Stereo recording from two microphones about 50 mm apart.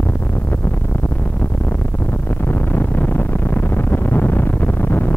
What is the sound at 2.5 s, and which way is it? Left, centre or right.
Music, left.